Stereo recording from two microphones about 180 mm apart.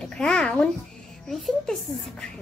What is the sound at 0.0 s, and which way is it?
Babbling, 5° left (ahead or behind).